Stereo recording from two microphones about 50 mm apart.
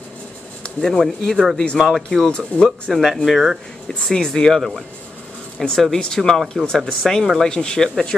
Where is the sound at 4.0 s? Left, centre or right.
Centre.